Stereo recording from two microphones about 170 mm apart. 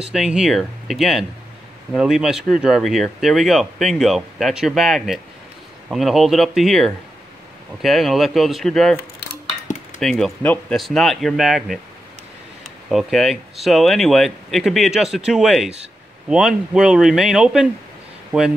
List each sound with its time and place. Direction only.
0.0 s speech: 5° right (ahead or behind)
9.9 s speech: centre (ahead or behind)
12.9 s speech: centre (ahead or behind)